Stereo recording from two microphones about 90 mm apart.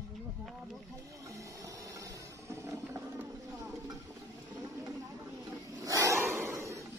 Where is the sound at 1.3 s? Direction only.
35° right (ahead or behind).